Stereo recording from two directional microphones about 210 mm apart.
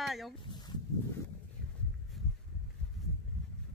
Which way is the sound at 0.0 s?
Centre (ahead or behind).